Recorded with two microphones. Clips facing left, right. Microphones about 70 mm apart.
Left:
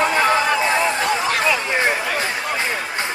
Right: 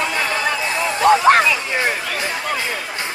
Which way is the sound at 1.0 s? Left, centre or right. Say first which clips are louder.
Right 8 dB; right.